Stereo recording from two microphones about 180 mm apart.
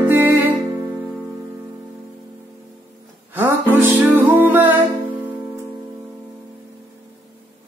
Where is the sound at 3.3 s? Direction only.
10° right (ahead or behind).